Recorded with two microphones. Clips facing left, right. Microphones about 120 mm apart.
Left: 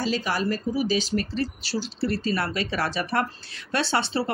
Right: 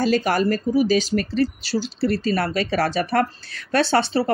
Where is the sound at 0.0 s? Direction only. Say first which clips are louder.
Right 7 dB; 50° right (ahead or behind).